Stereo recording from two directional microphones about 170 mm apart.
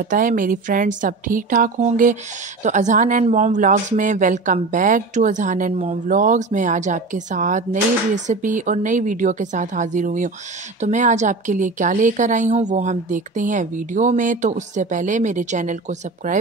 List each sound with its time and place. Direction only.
0.0 s a woman's voice: 55° right (ahead or behind)